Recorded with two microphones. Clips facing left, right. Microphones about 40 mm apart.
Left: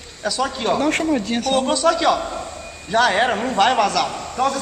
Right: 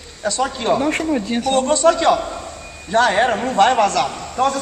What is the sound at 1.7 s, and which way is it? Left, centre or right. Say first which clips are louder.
Speech: right 4 dB; right.